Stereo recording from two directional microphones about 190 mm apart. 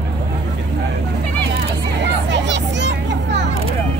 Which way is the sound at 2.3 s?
70° right (ahead or behind).